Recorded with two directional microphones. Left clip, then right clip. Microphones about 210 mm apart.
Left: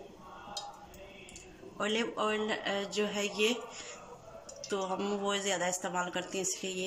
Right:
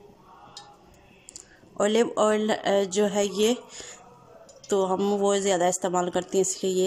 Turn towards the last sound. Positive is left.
turn(degrees=-25)  # may be behind; listen again after turning